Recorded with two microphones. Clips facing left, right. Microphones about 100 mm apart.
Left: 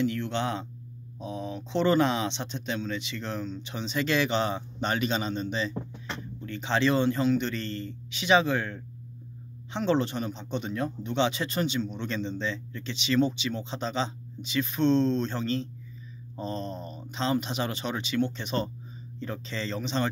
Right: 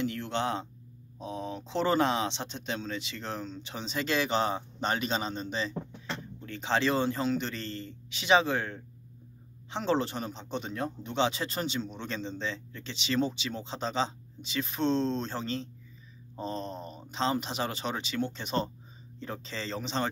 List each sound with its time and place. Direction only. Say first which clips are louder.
0.0 s speech: left 3 dB; 35° right (ahead or behind)
16.7 s speech: left 2 dB; 15° right (ahead or behind)
17.1 s speech: left 2 dB; 35° right (ahead or behind)